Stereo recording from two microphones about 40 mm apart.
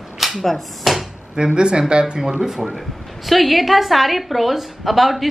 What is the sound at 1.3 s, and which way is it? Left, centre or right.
Speech, right.